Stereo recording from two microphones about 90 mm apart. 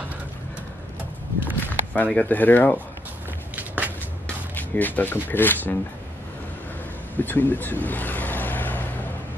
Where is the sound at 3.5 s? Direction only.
20° right (ahead or behind).